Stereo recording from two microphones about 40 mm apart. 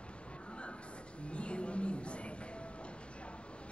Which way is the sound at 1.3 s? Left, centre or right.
Left.